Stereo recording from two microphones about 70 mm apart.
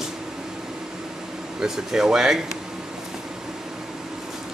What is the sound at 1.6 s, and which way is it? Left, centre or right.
Speech, centre.